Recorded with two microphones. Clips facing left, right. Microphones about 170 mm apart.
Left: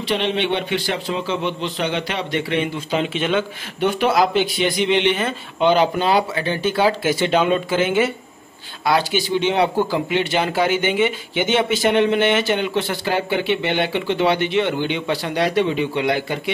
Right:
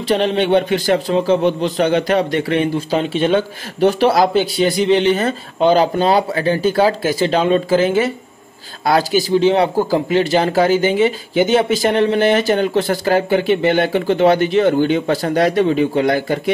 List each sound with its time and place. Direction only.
0.1 s a man's voice: 40° right (ahead or behind)